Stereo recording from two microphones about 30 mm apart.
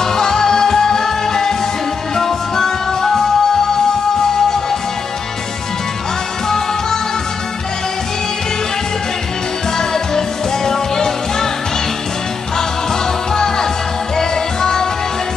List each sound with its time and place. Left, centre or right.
0.0 s music: centre
9.8 s music: centre
13.3 s music: centre